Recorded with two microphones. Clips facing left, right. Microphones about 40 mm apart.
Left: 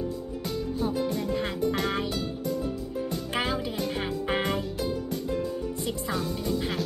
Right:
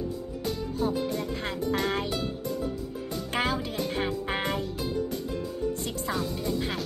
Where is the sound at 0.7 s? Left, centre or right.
Centre.